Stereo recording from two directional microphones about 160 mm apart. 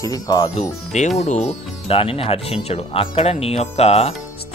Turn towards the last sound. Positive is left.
turn(degrees=40)  # may be behind; listen again after turning